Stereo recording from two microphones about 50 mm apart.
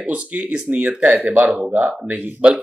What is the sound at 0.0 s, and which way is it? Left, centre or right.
Speech, right.